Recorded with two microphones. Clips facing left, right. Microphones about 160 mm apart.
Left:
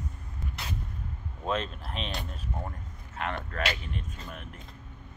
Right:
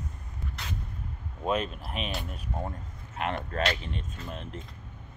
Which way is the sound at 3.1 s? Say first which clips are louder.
Right 3 dB; 20° right (ahead or behind).